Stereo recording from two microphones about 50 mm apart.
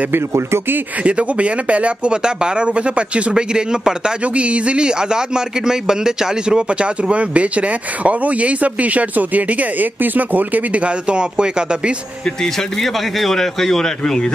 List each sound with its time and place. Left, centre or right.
0.1 s speech: right
1.0 s speech: right
12.8 s a man's voice: centre